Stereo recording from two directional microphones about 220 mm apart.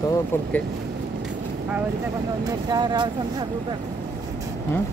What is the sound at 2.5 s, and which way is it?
Speech, 20° right (ahead or behind).